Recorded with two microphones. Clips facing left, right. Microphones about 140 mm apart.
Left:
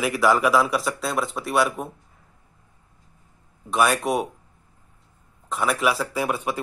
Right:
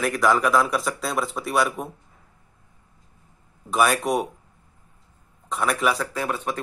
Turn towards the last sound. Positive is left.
turn(degrees=10)  # may be behind; listen again after turning